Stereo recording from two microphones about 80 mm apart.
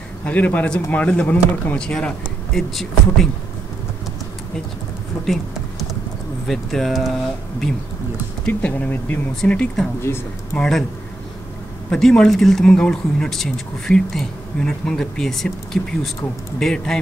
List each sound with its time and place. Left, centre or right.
0.2 s speech: centre
5.2 s a sound: centre
6.4 s speech: centre
8.5 s speech: centre
10.0 s speech: left
10.6 s speech: centre
11.9 s speech: centre